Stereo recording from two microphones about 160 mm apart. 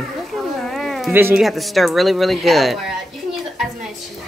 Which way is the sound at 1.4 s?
Centre (ahead or behind).